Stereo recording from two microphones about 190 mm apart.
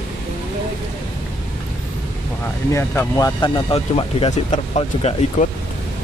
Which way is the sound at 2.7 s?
15° left (ahead or behind).